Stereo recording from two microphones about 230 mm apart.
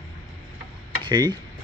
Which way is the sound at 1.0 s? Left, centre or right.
Centre.